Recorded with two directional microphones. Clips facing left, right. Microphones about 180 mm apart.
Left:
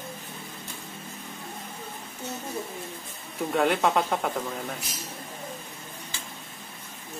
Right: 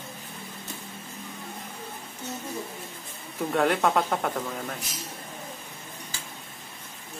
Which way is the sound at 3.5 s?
Centre (ahead or behind).